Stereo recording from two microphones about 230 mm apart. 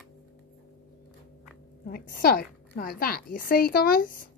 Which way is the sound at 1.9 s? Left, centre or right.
Left.